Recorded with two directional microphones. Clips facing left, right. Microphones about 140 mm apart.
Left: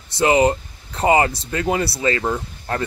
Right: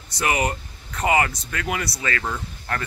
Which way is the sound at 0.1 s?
25° left (ahead or behind).